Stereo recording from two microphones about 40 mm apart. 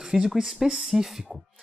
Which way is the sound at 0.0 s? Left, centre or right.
Centre.